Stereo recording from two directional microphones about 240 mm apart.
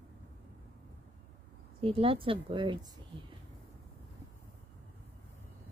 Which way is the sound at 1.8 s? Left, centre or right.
Right.